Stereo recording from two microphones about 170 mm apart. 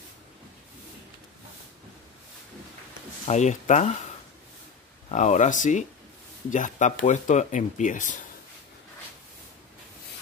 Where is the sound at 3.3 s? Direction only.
45° left (ahead or behind).